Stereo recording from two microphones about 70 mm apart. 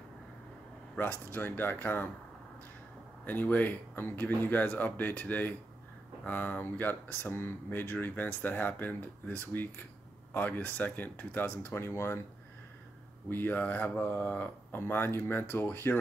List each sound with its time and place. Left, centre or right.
1.3 s speech: left
3.3 s speech: left
13.3 s speech: left